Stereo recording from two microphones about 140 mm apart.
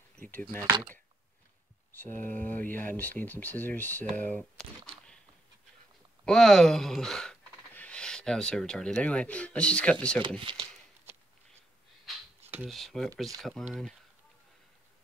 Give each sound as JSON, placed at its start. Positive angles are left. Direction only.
{"t": 0.2, "sound": "speech", "side_deg": 15}
{"t": 2.0, "sound": "speech", "side_deg": 15}
{"t": 6.2, "sound": "speech", "side_deg": 5}
{"t": 10.4, "sound": "speech", "side_deg": -35}
{"t": 12.1, "sound": "a sound", "side_deg": 0}
{"t": 12.6, "sound": "speech", "side_deg": 0}